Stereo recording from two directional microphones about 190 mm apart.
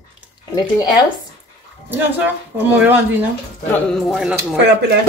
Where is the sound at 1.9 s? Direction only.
10° right (ahead or behind).